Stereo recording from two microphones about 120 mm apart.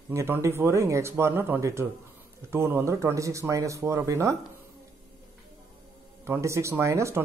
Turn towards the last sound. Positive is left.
turn(degrees=-25)  # may be behind; listen again after turning